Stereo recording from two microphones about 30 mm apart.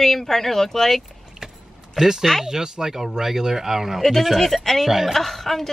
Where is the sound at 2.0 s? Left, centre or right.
Centre.